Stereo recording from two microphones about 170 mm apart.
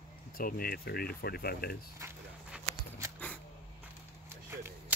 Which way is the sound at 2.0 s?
15° right (ahead or behind).